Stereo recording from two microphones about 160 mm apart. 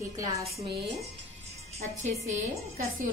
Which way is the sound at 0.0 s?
20° right (ahead or behind).